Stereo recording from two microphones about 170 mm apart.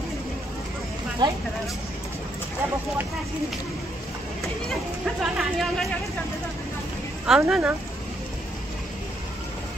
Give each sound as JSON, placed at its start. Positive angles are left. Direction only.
{"t": 1.2, "sound": "speech", "side_deg": -25}
{"t": 5.2, "sound": "speech", "side_deg": 0}
{"t": 7.2, "sound": "speech", "side_deg": -5}